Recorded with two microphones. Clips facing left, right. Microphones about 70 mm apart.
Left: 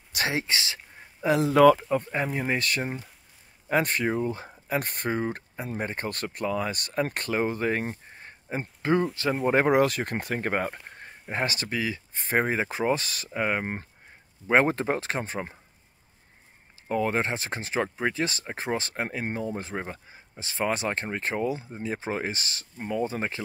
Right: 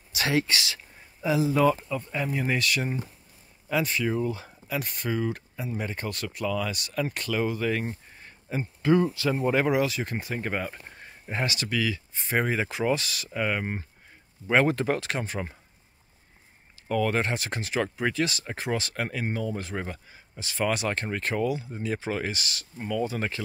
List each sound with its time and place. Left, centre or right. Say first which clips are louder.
0.3 s speech: right 7 dB; left
1.2 s speech: left 4 dB; left
2.1 s speech: even; left
3.6 s speech: left 2 dB; left
4.2 s speech: even; left
16.8 s speech: even; left